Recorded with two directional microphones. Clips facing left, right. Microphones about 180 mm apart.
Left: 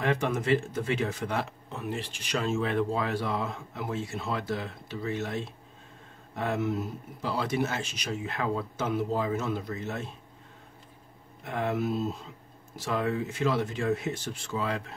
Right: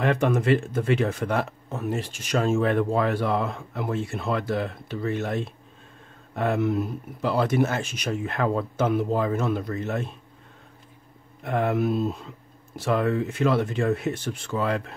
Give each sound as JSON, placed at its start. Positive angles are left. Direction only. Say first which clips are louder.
{"t": 0.0, "sound": "speech", "louder": "right 5 dB", "side_deg": -60}
{"t": 11.4, "sound": "speech", "louder": "right 6 dB", "side_deg": -60}